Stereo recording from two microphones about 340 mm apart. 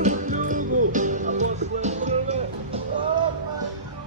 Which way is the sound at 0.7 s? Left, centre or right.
Right.